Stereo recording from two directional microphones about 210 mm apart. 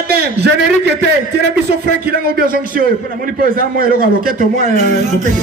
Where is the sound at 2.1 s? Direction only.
45° right (ahead or behind).